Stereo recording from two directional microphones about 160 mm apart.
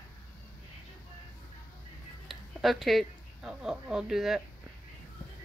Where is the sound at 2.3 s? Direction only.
Centre (ahead or behind).